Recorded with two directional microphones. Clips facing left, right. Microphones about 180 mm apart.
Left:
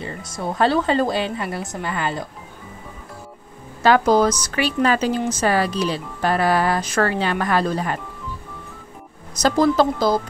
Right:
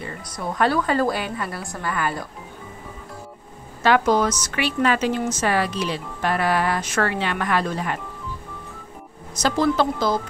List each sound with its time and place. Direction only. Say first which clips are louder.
0.6 s a woman's voice: left 2 dB; 25° left (ahead or behind)
3.8 s speech: left 3 dB; 35° left (ahead or behind)
9.3 s speech: left 3 dB; 40° left (ahead or behind)